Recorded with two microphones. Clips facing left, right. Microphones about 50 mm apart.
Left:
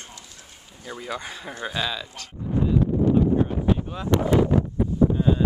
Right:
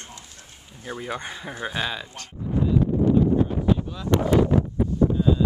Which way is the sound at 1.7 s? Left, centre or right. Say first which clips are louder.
Left 1 dB; centre.